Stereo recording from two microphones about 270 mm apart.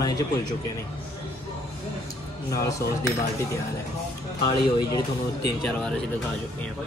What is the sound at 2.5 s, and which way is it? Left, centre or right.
Speech, centre.